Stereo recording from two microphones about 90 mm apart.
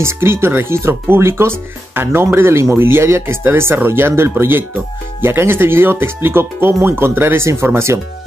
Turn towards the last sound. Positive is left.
turn(degrees=-30)  # may be behind; listen again after turning